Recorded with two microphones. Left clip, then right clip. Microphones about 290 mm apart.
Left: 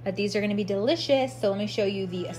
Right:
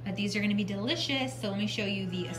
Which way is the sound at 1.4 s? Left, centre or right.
Centre.